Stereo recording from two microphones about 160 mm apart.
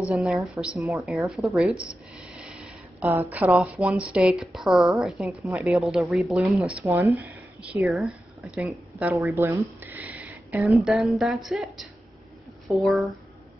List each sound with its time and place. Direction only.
0.0 s a woman's voice: centre (ahead or behind)
1.3 s a sound: centre (ahead or behind)
3.1 s a woman's voice: 10° right (ahead or behind)
6.8 s speech: 15° right (ahead or behind)
7.8 s a woman's voice: centre (ahead or behind)
9.3 s a woman's voice: 15° right (ahead or behind); by 13.1 s centre (ahead or behind)